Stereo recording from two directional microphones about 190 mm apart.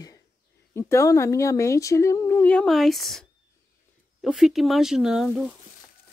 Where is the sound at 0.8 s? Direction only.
15° left (ahead or behind); by 5.5 s 5° right (ahead or behind).